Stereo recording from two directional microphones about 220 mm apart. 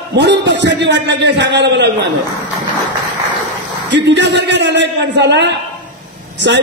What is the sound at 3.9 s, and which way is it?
Speech, 50° right (ahead or behind).